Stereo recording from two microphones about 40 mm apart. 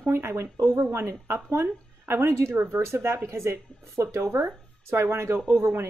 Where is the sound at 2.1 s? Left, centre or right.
Right.